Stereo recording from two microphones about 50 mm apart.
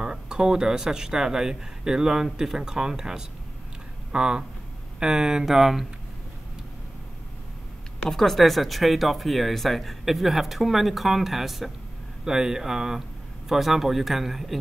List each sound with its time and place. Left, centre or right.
0.0 s speech: centre
8.1 s speech: centre